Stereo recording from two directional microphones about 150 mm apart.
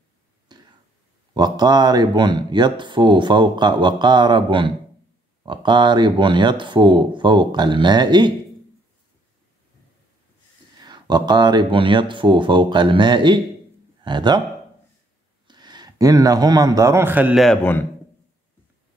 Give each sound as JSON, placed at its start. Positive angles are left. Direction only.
{"t": 0.5, "sound": "a sound", "side_deg": -30}
{"t": 1.3, "sound": "speech", "side_deg": -25}
{"t": 10.8, "sound": "speech", "side_deg": -30}
{"t": 15.4, "sound": "a man's voice", "side_deg": -30}
{"t": 17.6, "sound": "a man's voice", "side_deg": 15}